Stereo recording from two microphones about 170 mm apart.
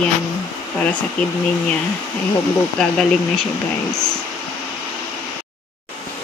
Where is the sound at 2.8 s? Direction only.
5° left (ahead or behind).